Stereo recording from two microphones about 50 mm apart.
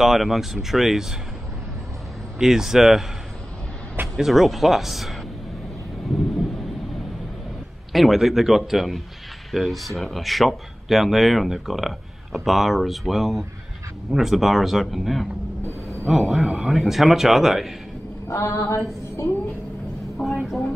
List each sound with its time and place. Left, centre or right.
0.0 s speech: centre
2.3 s speech: centre
4.2 s speech: centre
7.9 s speech: centre
18.3 s a sound: left
20.2 s speech: centre